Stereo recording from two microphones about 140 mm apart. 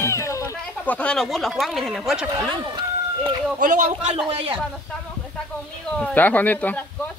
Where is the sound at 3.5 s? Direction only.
70° right (ahead or behind).